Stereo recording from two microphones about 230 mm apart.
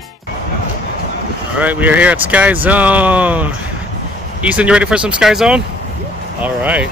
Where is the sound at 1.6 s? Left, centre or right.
Centre.